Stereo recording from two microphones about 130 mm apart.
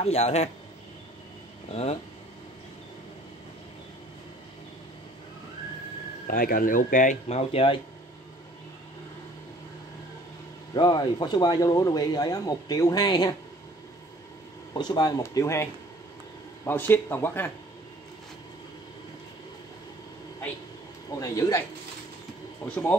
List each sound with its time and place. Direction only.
0.0 s speech: 55° left (ahead or behind)
1.7 s speech: 50° left (ahead or behind)
6.2 s speech: 90° left
7.2 s speech: 50° left (ahead or behind)
10.7 s speech: 35° left (ahead or behind)
14.7 s speech: 30° left (ahead or behind); by 17.5 s 15° left (ahead or behind)
21.2 s speech: 25° left (ahead or behind)